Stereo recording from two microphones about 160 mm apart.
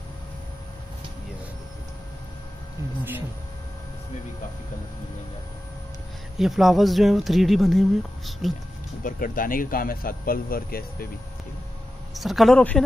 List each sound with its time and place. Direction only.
6.3 s speech: centre (ahead or behind)
9.0 s speech: 60° left (ahead or behind)
12.1 s speech: centre (ahead or behind)